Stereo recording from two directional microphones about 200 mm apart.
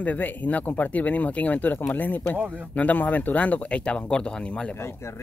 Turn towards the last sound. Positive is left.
turn(degrees=15)  # may be behind; listen again after turning